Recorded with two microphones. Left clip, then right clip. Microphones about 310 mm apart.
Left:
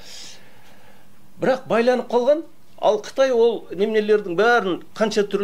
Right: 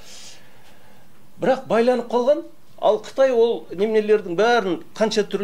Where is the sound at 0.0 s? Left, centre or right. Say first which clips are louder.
Left 3 dB; left.